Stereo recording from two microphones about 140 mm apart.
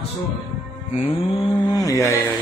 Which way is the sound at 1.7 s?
25° left (ahead or behind).